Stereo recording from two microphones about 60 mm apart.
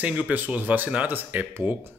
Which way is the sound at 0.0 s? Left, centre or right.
Right.